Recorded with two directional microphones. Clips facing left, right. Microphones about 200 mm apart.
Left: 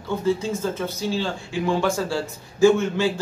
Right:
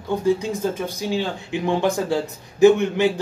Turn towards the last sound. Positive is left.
turn(degrees=-20)  # may be behind; listen again after turning